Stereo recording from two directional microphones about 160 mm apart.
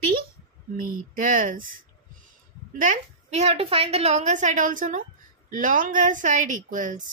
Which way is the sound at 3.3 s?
40° right (ahead or behind).